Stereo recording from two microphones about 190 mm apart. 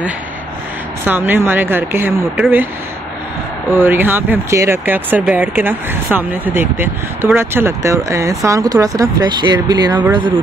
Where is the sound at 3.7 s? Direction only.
10° right (ahead or behind).